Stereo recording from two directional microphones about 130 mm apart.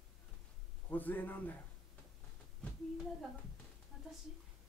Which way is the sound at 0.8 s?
15° left (ahead or behind).